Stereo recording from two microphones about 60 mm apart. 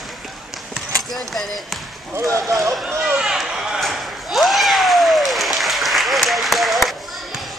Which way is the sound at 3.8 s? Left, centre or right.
Centre.